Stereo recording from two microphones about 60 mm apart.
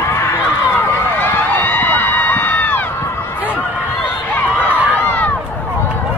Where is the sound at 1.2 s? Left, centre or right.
Left.